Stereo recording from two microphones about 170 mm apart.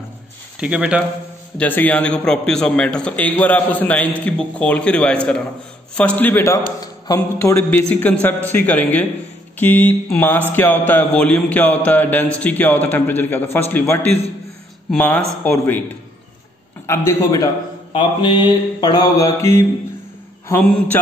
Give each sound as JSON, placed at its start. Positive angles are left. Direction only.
{"t": 0.6, "sound": "speech", "side_deg": -5}
{"t": 1.6, "sound": "a man's voice", "side_deg": 10}
{"t": 16.8, "sound": "a man's voice", "side_deg": 15}
{"t": 17.9, "sound": "mantra", "side_deg": 25}
{"t": 20.4, "sound": "a man's voice", "side_deg": 10}